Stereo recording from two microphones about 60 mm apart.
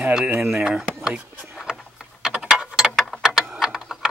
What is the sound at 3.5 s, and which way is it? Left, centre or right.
Typing, centre.